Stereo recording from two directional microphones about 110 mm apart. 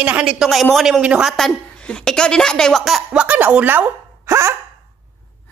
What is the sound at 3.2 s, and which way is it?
A woman's voice, 10° right (ahead or behind).